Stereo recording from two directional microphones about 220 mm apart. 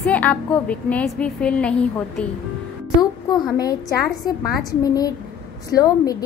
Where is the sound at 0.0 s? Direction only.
5° left (ahead or behind).